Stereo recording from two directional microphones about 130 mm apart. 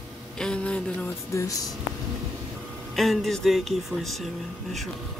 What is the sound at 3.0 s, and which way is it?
Speech, centre (ahead or behind).